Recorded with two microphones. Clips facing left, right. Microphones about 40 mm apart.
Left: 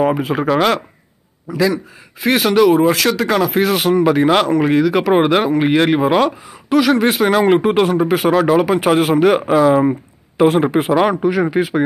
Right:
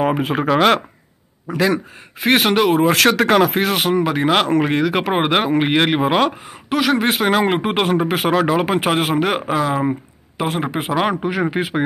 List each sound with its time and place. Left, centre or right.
0.0 s speech: right
1.5 s speech: right
2.2 s speech: right
2.9 s speech: right
3.5 s speech: centre
4.5 s speech: right
5.1 s speech: centre
5.5 s speech: right
8.8 s speech: centre
11.1 s speech: right